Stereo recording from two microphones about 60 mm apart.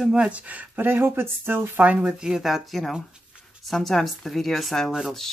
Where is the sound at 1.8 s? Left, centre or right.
Right; by 5.1 s centre.